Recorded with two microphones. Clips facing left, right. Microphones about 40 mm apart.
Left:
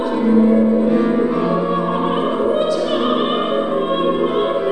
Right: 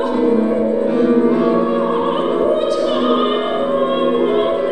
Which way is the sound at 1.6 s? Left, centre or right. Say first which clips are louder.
Right 2 dB; centre.